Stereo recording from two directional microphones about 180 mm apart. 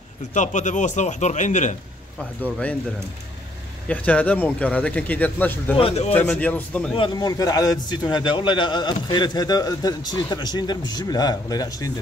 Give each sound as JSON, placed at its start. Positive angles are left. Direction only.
{"t": 0.3, "sound": "a man's voice", "side_deg": 45}
{"t": 3.9, "sound": "speech", "side_deg": 10}
{"t": 5.8, "sound": "speech", "side_deg": 35}
{"t": 6.1, "sound": "speech", "side_deg": 5}
{"t": 7.0, "sound": "a man's voice", "side_deg": 20}